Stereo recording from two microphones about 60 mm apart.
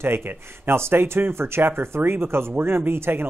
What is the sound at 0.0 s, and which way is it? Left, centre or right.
Speech, right.